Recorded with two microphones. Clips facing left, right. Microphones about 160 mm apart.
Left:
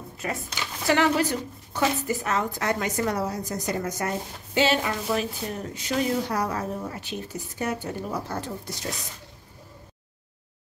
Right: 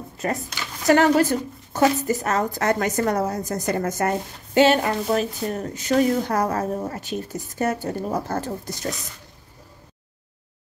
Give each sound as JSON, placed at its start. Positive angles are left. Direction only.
{"t": 0.2, "sound": "a woman's voice", "side_deg": -40}